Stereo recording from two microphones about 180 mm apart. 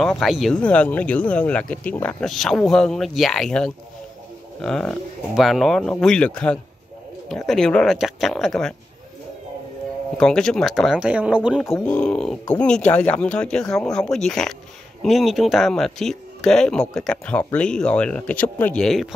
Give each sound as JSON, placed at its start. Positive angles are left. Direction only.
{"t": 0.0, "sound": "speech", "side_deg": 0}
{"t": 10.1, "sound": "speech", "side_deg": 5}
{"t": 11.7, "sound": "speech", "side_deg": 5}